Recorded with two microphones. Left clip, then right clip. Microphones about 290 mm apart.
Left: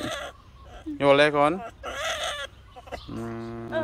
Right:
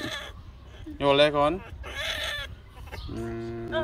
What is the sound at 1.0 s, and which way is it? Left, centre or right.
Chicken, centre.